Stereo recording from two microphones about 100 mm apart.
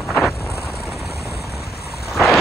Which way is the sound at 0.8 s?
Centre (ahead or behind).